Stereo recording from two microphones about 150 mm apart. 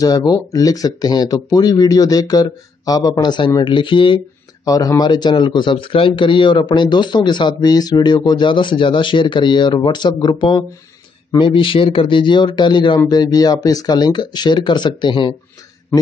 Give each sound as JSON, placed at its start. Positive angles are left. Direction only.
{"t": 0.0, "sound": "a man's voice", "side_deg": 25}
{"t": 4.6, "sound": "a man's voice", "side_deg": 25}